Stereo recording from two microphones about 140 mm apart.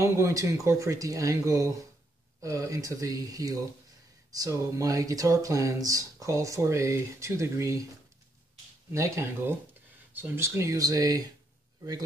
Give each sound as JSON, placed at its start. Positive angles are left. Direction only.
{"t": 0.0, "sound": "speech", "side_deg": -25}
{"t": 8.9, "sound": "speech", "side_deg": -20}